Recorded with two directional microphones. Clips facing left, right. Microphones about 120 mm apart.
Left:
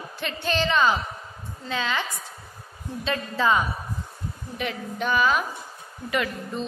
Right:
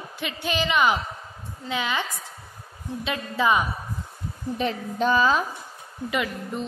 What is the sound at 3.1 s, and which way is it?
Speech, 15° right (ahead or behind).